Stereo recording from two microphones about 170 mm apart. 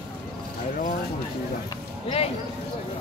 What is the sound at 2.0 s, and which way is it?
Speech, 35° left (ahead or behind).